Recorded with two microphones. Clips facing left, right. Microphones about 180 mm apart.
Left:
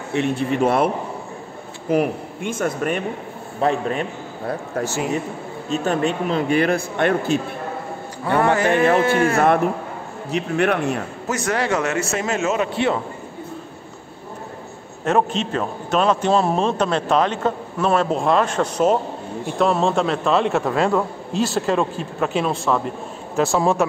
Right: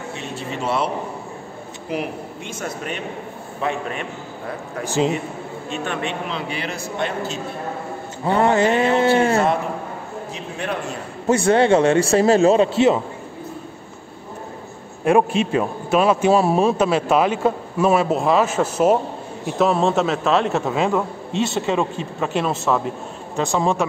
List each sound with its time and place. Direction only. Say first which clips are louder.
0.1 s a man's voice: left 13 dB; 60° left (ahead or behind)
3.6 s a man's voice: left 5 dB; 35° left (ahead or behind)
4.8 s a man's voice: right 8 dB; 15° right (ahead or behind)
5.7 s a man's voice: left 6 dB; 40° left (ahead or behind); by 7.3 s 55° left (ahead or behind)
8.3 s a man's voice: right 1 dB; 25° right (ahead or behind)
8.6 s a man's voice: left 1 dB; 55° left (ahead or behind)
8.9 s a man's voice: right 1 dB; 30° right (ahead or behind)
10.3 s a man's voice: left 9 dB; 65° left (ahead or behind)
11.2 s a man's voice: right 8 dB; 30° right (ahead or behind)
15.0 s a man's voice: right 3 dB; 10° right (ahead or behind)